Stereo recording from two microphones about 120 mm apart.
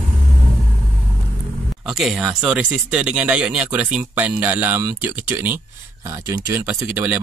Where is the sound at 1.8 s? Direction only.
5° right (ahead or behind).